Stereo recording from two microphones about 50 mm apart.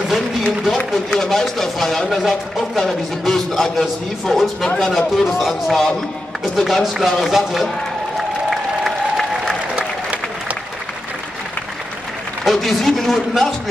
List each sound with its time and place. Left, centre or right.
1.1 s speech: centre
8.2 s applause: centre
9.8 s applause: right
12.4 s speech: centre